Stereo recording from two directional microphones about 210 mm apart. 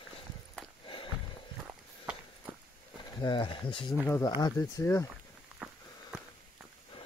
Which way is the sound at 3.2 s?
25° left (ahead or behind).